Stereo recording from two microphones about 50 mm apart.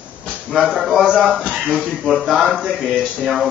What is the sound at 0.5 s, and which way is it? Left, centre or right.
Speech, centre.